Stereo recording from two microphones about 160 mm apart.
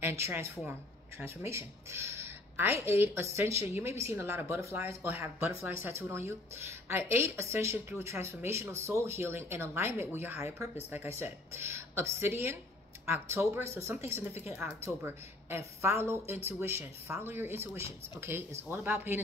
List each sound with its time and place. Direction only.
0.0 s speech: 15° right (ahead or behind)